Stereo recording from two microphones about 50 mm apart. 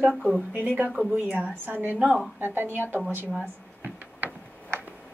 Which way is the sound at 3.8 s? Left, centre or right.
Right.